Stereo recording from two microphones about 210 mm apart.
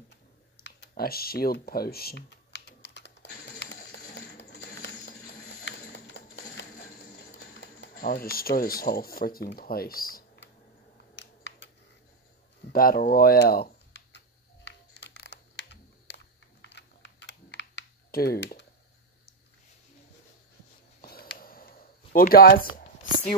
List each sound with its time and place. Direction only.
0.6 s computer keyboard: 50° left (ahead or behind)
7.1 s speech: 45° left (ahead or behind)
11.1 s typing: 55° left (ahead or behind)
12.7 s a sound: 45° left (ahead or behind)
16.6 s typing: 55° left (ahead or behind)
21.0 s a sound: 45° left (ahead or behind)